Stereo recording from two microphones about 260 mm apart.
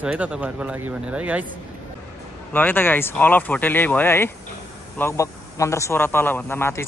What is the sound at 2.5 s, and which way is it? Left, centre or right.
Speech, centre.